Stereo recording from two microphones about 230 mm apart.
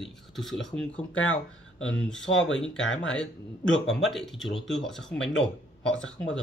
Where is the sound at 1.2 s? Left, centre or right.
Left.